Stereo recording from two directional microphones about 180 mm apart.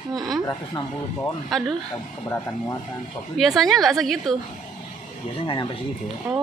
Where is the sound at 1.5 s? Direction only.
Centre (ahead or behind).